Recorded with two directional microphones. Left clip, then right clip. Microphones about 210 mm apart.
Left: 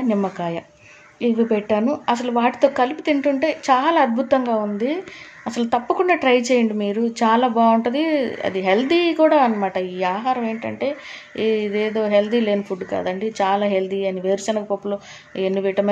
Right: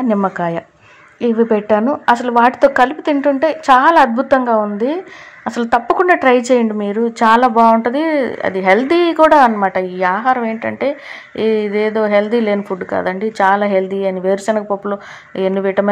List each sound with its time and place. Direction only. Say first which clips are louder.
0.1 s speech: right 6 dB; 15° right (ahead or behind)